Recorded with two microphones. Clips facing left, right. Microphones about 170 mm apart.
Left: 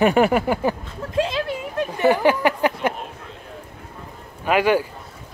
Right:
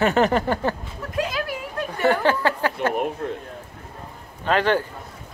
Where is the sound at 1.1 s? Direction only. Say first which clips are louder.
Left 4 dB; 25° left (ahead or behind).